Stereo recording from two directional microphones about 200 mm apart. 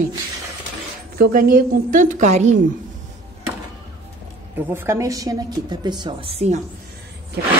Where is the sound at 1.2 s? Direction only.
50° right (ahead or behind).